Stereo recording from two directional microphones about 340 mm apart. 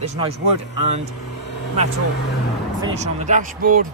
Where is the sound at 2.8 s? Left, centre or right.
Centre.